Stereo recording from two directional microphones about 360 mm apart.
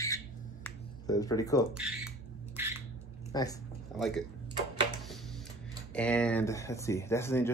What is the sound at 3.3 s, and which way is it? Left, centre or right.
Speech, centre.